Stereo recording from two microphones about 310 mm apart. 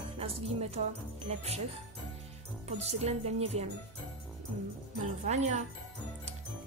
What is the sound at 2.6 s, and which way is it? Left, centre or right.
Speech, right.